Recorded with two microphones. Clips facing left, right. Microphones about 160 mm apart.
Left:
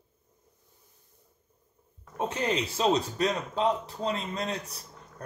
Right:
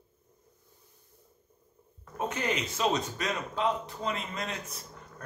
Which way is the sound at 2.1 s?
30° left (ahead or behind).